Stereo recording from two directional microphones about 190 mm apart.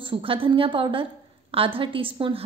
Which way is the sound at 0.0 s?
25° right (ahead or behind).